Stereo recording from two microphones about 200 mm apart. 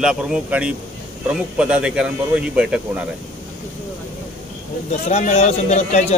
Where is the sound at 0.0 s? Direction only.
5° right (ahead or behind).